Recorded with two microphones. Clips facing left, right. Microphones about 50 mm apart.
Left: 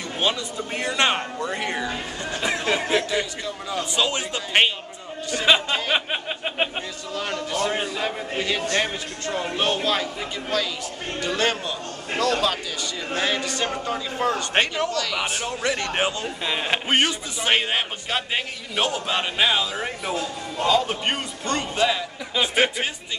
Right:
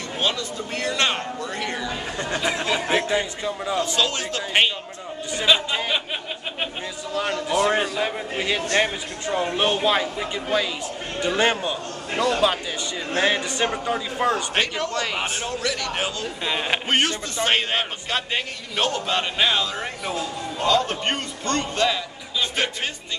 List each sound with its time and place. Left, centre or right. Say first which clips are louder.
0.2 s speech: left 1 dB; centre
2.9 s speech: right 1 dB; right
3.9 s speech: even; centre
7.2 s a man's voice: right 4 dB; centre
14.5 s speech: left 2 dB; left
15.0 s a man's voice: even; right
15.6 s speech: left 4 dB; left
16.4 s speech: even; centre